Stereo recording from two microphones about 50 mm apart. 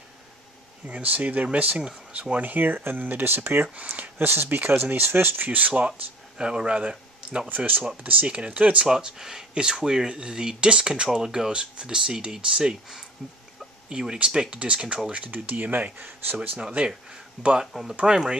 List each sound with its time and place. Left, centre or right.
0.8 s speech: right
3.6 s speech: right
3.9 s speech: right
6.3 s speech: centre
7.4 s speech: right
8.8 s speech: centre; by 16.3 s right
16.5 s speech: right